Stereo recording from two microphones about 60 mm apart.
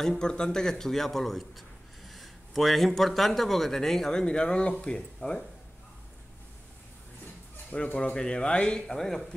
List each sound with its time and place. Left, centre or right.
0.0 s speech: centre
7.7 s speech: centre